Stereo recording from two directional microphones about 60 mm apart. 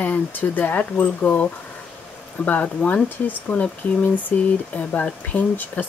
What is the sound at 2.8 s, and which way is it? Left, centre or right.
Speech, centre.